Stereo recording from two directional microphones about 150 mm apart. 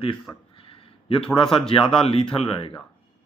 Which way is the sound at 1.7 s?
35° left (ahead or behind).